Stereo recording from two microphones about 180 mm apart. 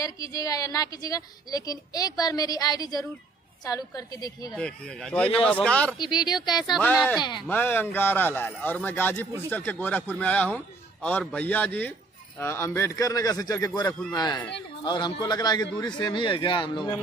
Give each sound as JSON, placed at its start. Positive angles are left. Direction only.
{"t": 0.0, "sound": "a woman's voice", "side_deg": 20}
{"t": 4.6, "sound": "a man's voice", "side_deg": 5}
{"t": 6.1, "sound": "a woman's voice", "side_deg": 25}
{"t": 6.5, "sound": "speech", "side_deg": 0}
{"t": 6.8, "sound": "a man's voice", "side_deg": 10}
{"t": 7.2, "sound": "a woman's voice", "side_deg": 25}
{"t": 7.4, "sound": "a man's voice", "side_deg": 10}